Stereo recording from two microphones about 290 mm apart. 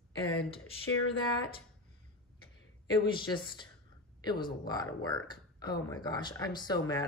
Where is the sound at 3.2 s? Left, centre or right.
Centre.